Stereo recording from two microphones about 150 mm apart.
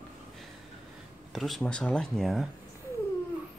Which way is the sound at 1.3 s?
Centre (ahead or behind).